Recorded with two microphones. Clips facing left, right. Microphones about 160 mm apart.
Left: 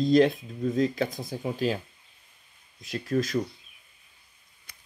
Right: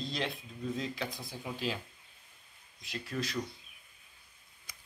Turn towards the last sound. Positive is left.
turn(degrees=45)  # may be behind; listen again after turning